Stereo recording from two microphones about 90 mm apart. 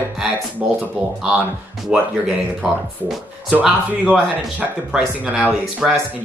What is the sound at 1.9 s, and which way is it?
Speech, 5° right (ahead or behind).